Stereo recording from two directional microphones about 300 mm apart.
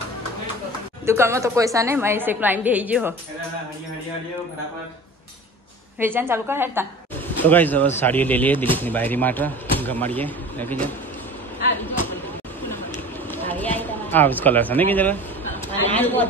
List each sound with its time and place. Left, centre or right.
1.0 s a woman's voice: centre
5.9 s a woman's voice: centre
7.4 s speech: centre
13.3 s a man's voice: centre